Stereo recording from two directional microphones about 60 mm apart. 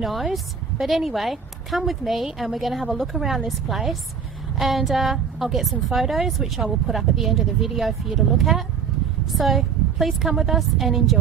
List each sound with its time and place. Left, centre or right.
0.0 s speech: centre